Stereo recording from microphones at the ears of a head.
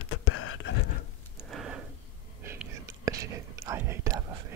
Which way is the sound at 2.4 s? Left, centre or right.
Right.